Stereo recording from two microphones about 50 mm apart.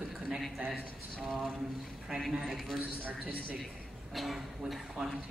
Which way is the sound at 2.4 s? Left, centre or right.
Centre.